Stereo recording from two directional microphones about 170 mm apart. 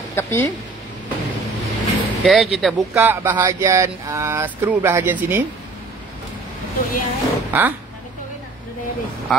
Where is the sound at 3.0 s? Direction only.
10° right (ahead or behind).